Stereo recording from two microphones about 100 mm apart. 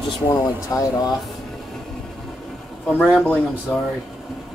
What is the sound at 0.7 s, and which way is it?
Speech, 30° left (ahead or behind).